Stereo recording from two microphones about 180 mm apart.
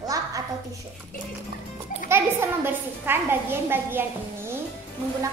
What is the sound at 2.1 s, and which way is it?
A woman's voice, 10° right (ahead or behind).